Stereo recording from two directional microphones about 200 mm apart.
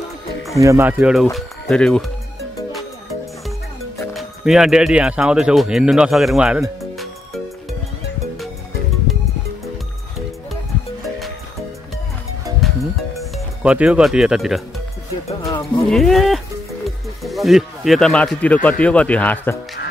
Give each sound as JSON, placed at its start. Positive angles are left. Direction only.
{"t": 0.6, "sound": "speech", "side_deg": -15}
{"t": 4.1, "sound": "speech", "side_deg": 0}
{"t": 9.1, "sound": "music", "side_deg": 0}
{"t": 12.5, "sound": "music", "side_deg": 0}
{"t": 15.4, "sound": "speech", "side_deg": 20}
{"t": 15.9, "sound": "speech", "side_deg": 0}